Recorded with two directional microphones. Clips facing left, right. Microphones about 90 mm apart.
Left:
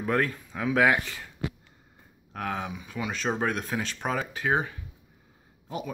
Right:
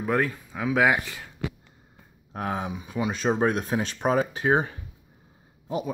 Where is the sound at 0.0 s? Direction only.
10° right (ahead or behind).